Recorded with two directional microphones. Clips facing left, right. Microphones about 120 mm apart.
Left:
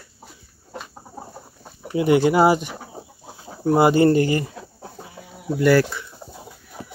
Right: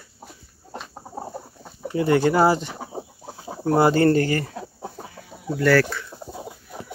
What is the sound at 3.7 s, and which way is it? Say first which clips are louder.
Speech: left 2 dB; 15° left (ahead or behind).